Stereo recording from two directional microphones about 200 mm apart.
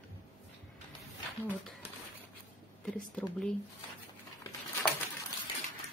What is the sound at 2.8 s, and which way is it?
Speech, centre (ahead or behind).